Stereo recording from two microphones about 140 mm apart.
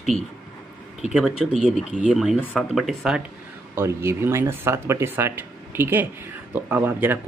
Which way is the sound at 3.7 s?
20° right (ahead or behind).